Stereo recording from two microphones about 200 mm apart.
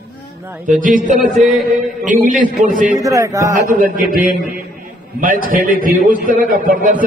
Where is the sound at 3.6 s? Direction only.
45° right (ahead or behind).